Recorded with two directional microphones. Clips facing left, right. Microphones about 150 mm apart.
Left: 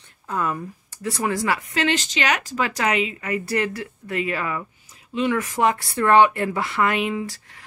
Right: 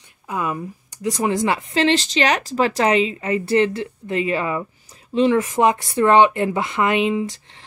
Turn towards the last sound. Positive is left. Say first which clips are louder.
# right 5 dB
turn(degrees=-20)  # may be behind; listen again after turning